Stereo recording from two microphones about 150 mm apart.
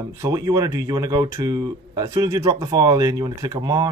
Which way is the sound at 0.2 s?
25° right (ahead or behind).